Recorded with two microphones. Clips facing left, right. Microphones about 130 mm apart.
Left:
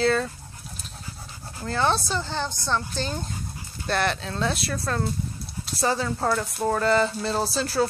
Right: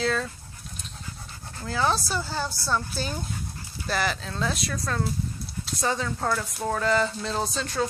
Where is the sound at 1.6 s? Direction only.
Centre (ahead or behind).